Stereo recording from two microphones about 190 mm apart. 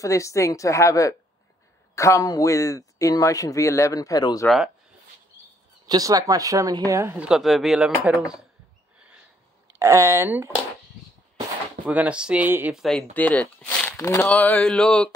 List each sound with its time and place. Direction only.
0.0 s a man's voice: 15° left (ahead or behind)
5.9 s speech: 20° right (ahead or behind)
9.8 s speech: 15° right (ahead or behind)
11.8 s speech: 10° right (ahead or behind)